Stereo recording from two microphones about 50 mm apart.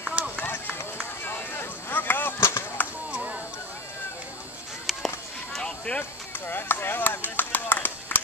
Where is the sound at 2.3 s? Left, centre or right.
Left.